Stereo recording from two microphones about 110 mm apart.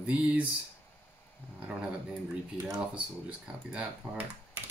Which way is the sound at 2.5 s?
30° right (ahead or behind).